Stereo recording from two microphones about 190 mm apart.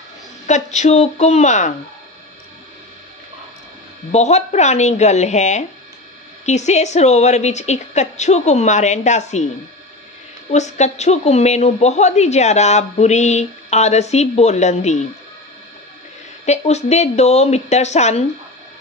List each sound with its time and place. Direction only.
0.5 s a woman's voice: 40° left (ahead or behind)
4.1 s a woman's voice: 35° left (ahead or behind)
10.5 s a woman's voice: 35° left (ahead or behind)
16.4 s a woman's voice: 35° left (ahead or behind)